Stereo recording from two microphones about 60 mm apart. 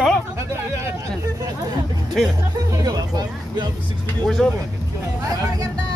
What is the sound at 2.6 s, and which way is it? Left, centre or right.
Speech, right.